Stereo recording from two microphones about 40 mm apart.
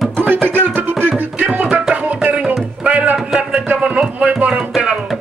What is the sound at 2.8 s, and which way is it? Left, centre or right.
Music, right.